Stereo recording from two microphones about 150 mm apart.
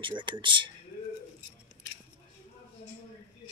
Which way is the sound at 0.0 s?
30° right (ahead or behind).